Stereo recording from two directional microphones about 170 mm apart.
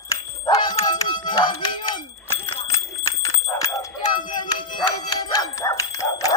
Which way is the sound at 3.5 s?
20° left (ahead or behind).